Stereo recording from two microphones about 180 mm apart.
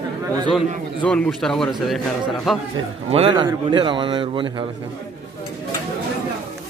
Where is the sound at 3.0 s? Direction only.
35° right (ahead or behind).